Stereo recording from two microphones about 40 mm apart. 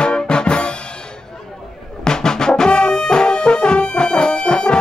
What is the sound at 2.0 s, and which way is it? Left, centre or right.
Brass instrument, centre.